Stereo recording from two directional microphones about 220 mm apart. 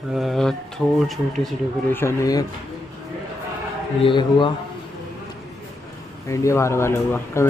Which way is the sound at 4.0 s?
20° left (ahead or behind).